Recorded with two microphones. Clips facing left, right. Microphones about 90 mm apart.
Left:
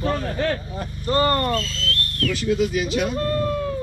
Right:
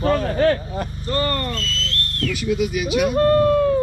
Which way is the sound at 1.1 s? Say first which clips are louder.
Left 4 dB; 25° left (ahead or behind).